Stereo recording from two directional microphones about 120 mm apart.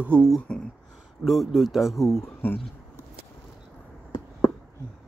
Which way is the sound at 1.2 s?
Centre (ahead or behind).